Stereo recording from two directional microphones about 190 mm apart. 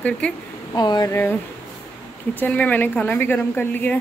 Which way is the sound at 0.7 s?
20° left (ahead or behind).